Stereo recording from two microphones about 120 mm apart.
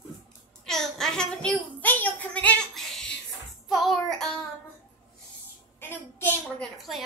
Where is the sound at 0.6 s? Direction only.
5° left (ahead or behind).